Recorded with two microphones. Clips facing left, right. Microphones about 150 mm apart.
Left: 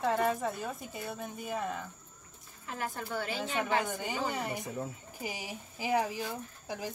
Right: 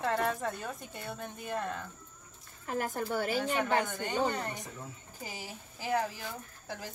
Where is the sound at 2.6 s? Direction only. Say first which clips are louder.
Right 4 dB; 45° right (ahead or behind).